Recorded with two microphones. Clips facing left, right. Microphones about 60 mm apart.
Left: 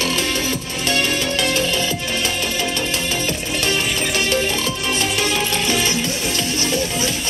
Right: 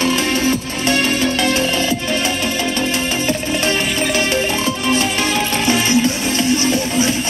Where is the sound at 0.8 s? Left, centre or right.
Centre.